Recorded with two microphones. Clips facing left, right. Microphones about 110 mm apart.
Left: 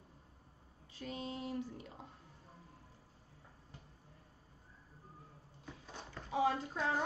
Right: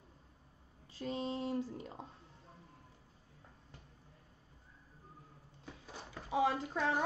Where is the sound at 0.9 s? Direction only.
30° right (ahead or behind).